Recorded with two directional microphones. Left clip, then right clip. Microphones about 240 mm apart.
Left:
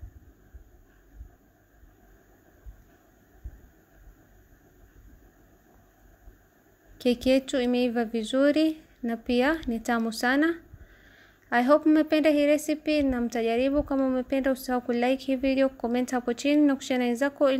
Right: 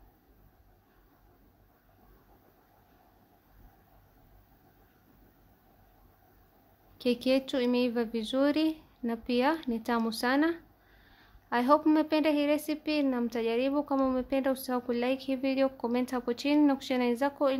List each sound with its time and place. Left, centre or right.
7.0 s a woman's voice: centre